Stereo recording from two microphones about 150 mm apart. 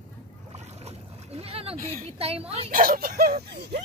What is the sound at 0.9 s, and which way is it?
Splash, 40° right (ahead or behind).